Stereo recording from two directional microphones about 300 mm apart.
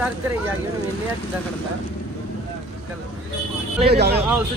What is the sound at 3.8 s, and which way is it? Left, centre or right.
Speech, right.